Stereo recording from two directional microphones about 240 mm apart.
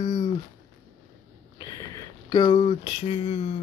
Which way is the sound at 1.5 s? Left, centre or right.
Centre.